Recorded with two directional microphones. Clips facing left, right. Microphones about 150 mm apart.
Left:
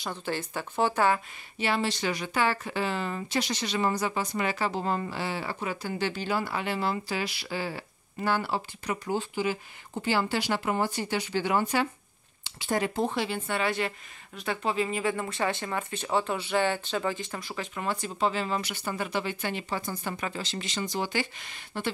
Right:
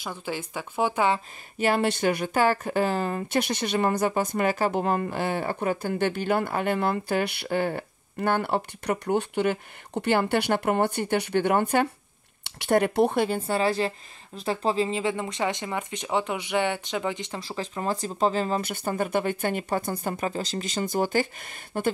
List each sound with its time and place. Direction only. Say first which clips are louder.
0.0 s speech: even; 10° right (ahead or behind)
1.6 s speech: right 5 dB; 50° right (ahead or behind)
13.5 s speech: right 5 dB; 35° right (ahead or behind)
17.4 s speech: right 4 dB; 30° right (ahead or behind); by 20.2 s 50° right (ahead or behind)
20.2 s speech: right 5 dB; 35° right (ahead or behind)